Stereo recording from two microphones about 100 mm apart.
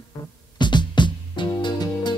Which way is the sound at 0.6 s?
50° left (ahead or behind).